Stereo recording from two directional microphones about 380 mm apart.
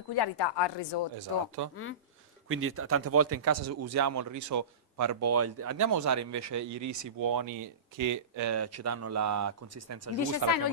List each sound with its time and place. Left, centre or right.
0.1 s speech: left
1.6 s speech: right
2.4 s speech: right
10.4 s speech: right